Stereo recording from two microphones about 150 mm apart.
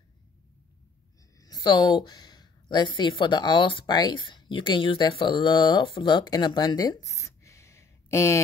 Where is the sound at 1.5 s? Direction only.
30° left (ahead or behind).